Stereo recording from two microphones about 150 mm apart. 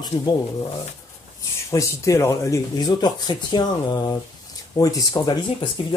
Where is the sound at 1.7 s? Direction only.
20° left (ahead or behind).